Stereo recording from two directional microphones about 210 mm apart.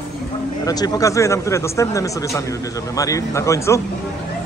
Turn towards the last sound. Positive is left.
turn(degrees=15)  # may be behind; listen again after turning